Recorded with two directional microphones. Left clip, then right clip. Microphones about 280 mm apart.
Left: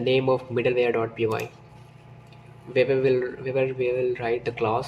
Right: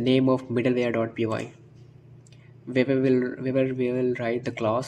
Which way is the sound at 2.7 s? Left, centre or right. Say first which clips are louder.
Left 2 dB; right.